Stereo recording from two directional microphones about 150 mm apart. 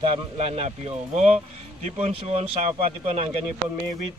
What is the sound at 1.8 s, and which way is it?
Speech, 45° right (ahead or behind).